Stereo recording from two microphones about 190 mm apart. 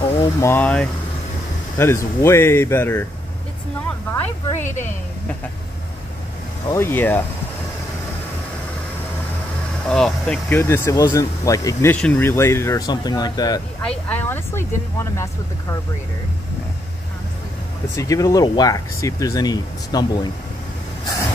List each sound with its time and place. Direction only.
0.2 s speech: 15° left (ahead or behind)
4.1 s speech: 15° left (ahead or behind)
6.7 s speech: 10° left (ahead or behind)
9.8 s speech: 5° left (ahead or behind); by 13.6 s 20° left (ahead or behind)
13.8 s speech: 10° left (ahead or behind)
17.9 s speech: 15° left (ahead or behind)